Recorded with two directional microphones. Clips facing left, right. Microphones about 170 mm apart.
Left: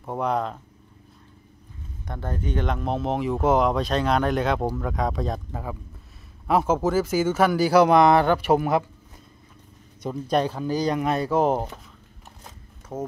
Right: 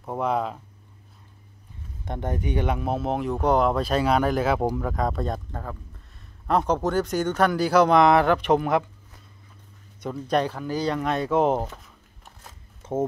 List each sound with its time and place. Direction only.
0.0 s speech: centre (ahead or behind)
2.0 s speech: 20° right (ahead or behind); by 8.8 s 5° left (ahead or behind)
10.4 s speech: 20° left (ahead or behind); by 11.6 s centre (ahead or behind)
12.8 s a sound: 25° right (ahead or behind)